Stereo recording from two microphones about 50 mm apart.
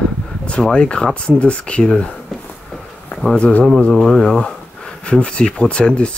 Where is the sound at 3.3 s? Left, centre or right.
Left.